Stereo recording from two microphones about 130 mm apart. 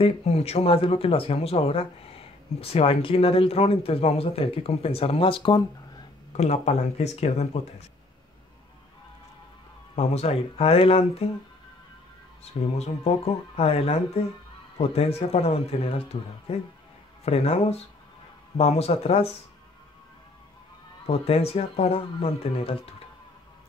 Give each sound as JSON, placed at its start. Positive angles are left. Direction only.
{"t": 0.0, "sound": "speech", "side_deg": 55}
{"t": 6.3, "sound": "speech", "side_deg": 60}
{"t": 9.9, "sound": "speech", "side_deg": 55}
{"t": 12.7, "sound": "speech", "side_deg": 55}
{"t": 21.1, "sound": "speech", "side_deg": 50}